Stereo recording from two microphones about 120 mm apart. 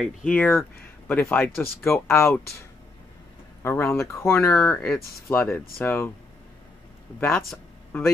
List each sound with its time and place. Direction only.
0.0 s speech: 10° left (ahead or behind)
3.6 s speech: 20° left (ahead or behind)
4.7 s speech: 5° left (ahead or behind)
5.3 s speech: 15° left (ahead or behind)
7.2 s speech: 15° left (ahead or behind)